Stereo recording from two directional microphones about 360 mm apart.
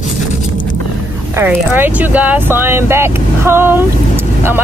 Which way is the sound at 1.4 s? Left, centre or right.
Centre.